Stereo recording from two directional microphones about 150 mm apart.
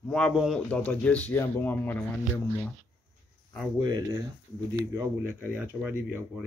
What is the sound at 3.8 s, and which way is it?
Speech, 30° right (ahead or behind).